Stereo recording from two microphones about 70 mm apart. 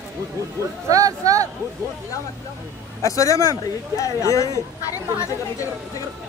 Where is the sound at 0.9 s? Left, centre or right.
Right.